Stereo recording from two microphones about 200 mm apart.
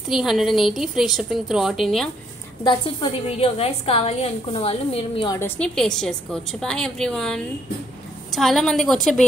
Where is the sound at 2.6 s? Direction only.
25° left (ahead or behind).